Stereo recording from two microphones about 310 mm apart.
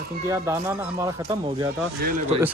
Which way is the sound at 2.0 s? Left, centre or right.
Right.